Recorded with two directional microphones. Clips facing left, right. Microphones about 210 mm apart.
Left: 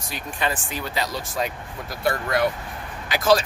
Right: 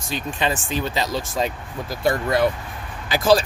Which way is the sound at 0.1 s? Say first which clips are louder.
Right 4 dB; 25° right (ahead or behind).